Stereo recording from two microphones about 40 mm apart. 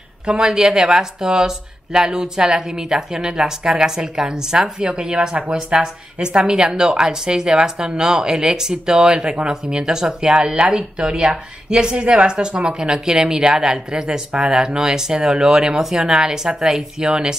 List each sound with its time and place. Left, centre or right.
0.3 s speech: right